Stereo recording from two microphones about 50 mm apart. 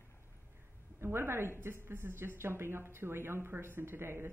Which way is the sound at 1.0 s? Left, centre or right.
Right.